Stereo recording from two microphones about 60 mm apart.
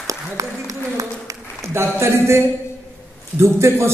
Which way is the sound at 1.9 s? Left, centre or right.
Right.